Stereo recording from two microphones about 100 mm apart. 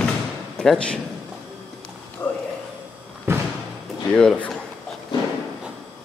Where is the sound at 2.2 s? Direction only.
15° left (ahead or behind).